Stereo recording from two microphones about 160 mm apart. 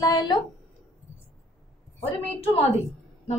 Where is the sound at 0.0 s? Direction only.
25° left (ahead or behind).